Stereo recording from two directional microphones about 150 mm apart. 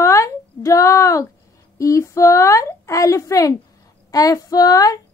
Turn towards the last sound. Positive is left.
turn(degrees=25)  # may be behind; listen again after turning